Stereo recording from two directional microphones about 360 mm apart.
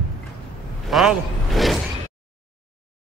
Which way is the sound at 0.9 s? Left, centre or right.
Centre.